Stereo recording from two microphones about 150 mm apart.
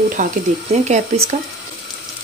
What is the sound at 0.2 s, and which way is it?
Speech, 60° right (ahead or behind).